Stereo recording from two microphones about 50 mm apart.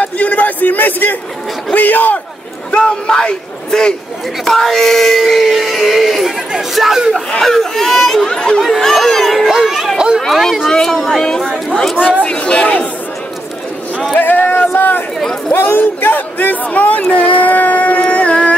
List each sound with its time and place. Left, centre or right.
0.0 s a sound: left
1.7 s speech: left
2.7 s speech: centre
8.6 s speech: centre
9.7 s a sound: centre
9.9 s a sound: centre
10.2 s speech: centre
10.7 s speech: centre
12.2 s speech: left
14.1 s speech: left
15.1 s speech: centre
15.5 s speech: left